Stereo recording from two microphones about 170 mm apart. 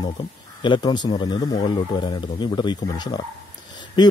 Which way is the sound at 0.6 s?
25° left (ahead or behind).